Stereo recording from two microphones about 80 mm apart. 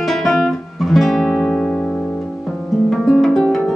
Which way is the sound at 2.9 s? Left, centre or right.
Centre.